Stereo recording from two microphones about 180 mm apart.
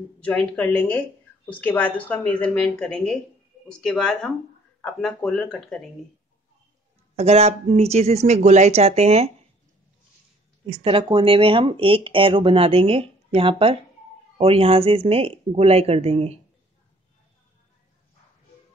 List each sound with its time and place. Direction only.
0.2 s speech: 5° left (ahead or behind)
7.2 s speech: 35° right (ahead or behind)
10.7 s speech: 30° right (ahead or behind)